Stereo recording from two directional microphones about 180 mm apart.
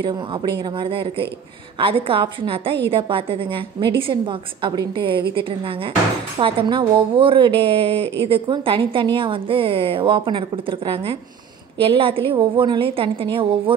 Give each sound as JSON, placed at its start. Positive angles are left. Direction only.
{"t": 0.0, "sound": "speech", "side_deg": -25}
{"t": 6.4, "sound": "speech", "side_deg": -30}